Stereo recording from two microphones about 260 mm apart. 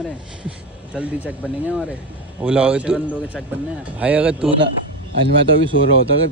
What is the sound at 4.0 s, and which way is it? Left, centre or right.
Speech, centre.